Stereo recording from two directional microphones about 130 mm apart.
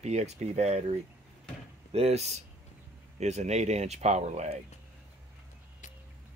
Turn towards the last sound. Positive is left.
turn(degrees=-55)  # may be behind; listen again after turning